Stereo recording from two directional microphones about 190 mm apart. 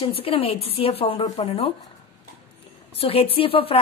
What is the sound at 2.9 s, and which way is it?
Speech, 30° left (ahead or behind).